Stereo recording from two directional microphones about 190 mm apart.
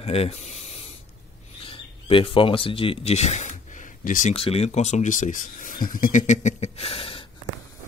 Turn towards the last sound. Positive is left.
turn(degrees=30)  # may be behind; listen again after turning